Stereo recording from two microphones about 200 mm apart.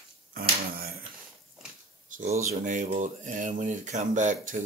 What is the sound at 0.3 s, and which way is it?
Dog, 45° right (ahead or behind).